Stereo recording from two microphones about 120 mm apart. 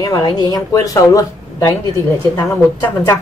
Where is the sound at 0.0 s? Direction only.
30° left (ahead or behind).